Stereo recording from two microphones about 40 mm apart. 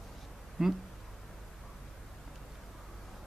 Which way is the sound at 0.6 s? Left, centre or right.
Centre.